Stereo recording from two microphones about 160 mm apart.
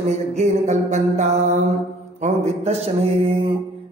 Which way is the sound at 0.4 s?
45° right (ahead or behind).